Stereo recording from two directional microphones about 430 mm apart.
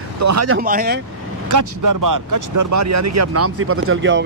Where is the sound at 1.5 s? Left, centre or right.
Right.